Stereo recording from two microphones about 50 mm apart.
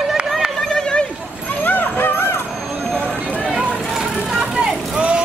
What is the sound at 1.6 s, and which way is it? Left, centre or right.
Music, left.